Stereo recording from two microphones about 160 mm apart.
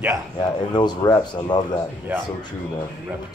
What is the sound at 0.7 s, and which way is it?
Speech, 25° left (ahead or behind).